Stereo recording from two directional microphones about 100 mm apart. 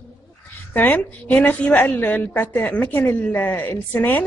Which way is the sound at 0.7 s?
15° left (ahead or behind).